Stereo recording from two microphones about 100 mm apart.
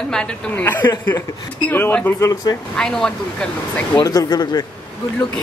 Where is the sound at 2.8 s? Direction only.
5° left (ahead or behind).